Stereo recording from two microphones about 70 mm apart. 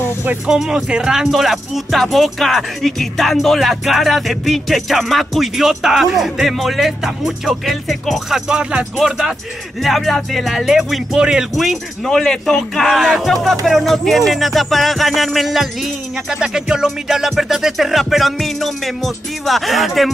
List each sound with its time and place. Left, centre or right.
0.5 s speech: centre